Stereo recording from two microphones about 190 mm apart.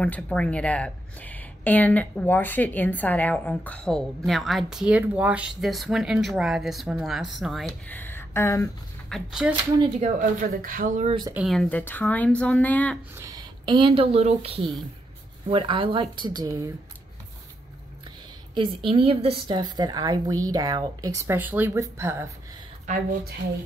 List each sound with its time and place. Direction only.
0.0 s speech: 5° left (ahead or behind)
9.1 s speech: 5° right (ahead or behind)
9.8 s speech: 35° right (ahead or behind)
11.1 s a woman's voice: 25° right (ahead or behind)
11.3 s speech: centre (ahead or behind)
13.1 s a woman's voice: 20° right (ahead or behind)
18.9 s a woman's voice: 30° right (ahead or behind); by 22.3 s 15° right (ahead or behind)